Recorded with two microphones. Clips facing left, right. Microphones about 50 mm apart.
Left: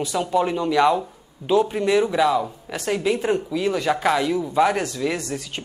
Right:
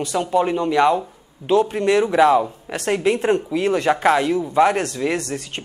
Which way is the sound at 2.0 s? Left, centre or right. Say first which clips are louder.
Right 5 dB; right.